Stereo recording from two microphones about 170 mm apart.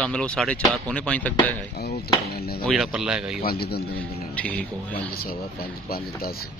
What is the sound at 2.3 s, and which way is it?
Speech, 65° left (ahead or behind).